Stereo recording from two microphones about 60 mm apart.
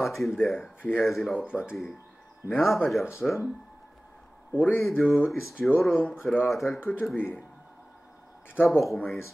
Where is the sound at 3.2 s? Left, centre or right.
Centre.